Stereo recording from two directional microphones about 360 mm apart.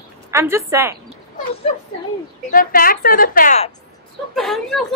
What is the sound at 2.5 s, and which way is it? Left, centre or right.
A woman's voice, left.